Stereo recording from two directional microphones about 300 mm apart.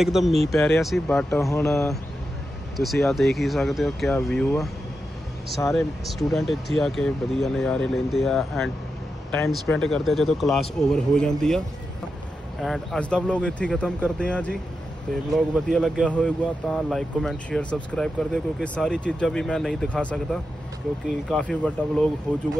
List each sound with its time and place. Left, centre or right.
0.0 s speech: centre
5.7 s speech: centre